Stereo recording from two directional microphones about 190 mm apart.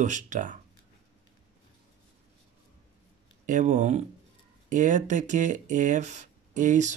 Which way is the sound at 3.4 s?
40° right (ahead or behind).